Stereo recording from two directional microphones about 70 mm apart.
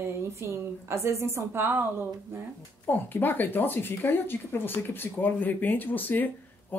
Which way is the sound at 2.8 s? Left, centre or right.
Left.